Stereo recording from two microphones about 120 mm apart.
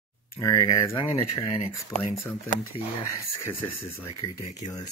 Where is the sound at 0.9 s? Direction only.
50° left (ahead or behind).